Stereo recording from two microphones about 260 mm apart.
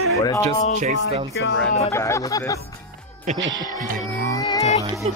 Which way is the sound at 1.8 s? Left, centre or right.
Centre.